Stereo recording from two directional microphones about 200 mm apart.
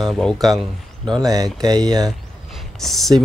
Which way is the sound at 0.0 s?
Centre (ahead or behind).